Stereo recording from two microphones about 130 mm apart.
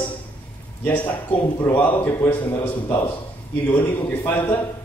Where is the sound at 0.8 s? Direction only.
15° left (ahead or behind).